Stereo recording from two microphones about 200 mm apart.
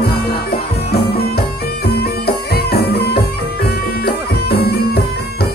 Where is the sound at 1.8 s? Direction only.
50° left (ahead or behind).